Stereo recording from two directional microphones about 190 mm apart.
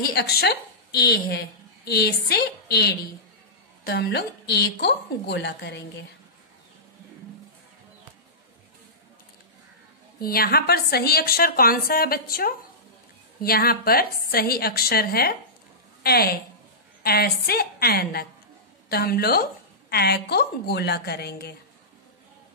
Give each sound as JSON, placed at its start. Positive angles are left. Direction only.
{"t": 0.0, "sound": "a woman's voice", "side_deg": 60}
{"t": 10.2, "sound": "a woman's voice", "side_deg": 55}